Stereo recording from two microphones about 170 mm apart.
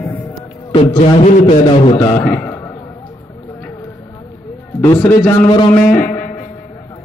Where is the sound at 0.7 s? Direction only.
35° left (ahead or behind).